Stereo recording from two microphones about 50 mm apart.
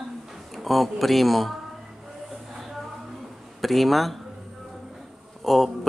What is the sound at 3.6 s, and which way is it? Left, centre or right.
Speech, centre.